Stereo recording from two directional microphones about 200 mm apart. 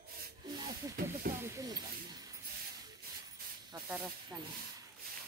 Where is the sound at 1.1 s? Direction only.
15° right (ahead or behind).